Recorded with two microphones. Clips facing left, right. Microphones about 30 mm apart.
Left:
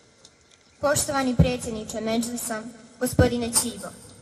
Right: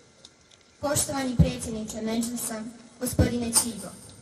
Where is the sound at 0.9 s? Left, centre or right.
Left.